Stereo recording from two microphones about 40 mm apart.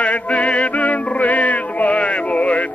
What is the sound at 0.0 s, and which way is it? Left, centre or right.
Music, left.